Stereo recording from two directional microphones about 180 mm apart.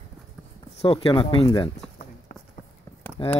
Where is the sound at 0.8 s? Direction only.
30° left (ahead or behind).